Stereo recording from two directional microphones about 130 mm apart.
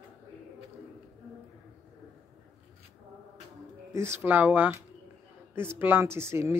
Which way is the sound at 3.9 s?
20° right (ahead or behind).